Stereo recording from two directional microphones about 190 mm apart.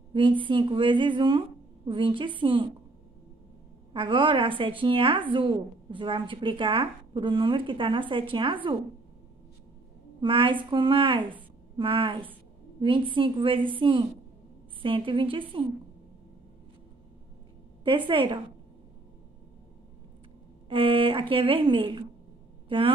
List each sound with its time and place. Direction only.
0.1 s a woman's voice: 25° right (ahead or behind)
3.9 s a woman's voice: 25° right (ahead or behind)
10.2 s a woman's voice: 25° right (ahead or behind)
17.8 s a woman's voice: 25° right (ahead or behind)
20.6 s a woman's voice: 25° right (ahead or behind)